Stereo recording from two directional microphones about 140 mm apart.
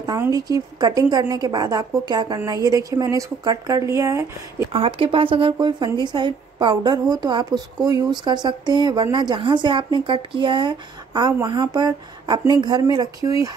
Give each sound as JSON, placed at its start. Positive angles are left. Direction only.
{"t": 0.3, "sound": "a woman's voice", "side_deg": -25}
{"t": 4.7, "sound": "a woman's voice", "side_deg": -40}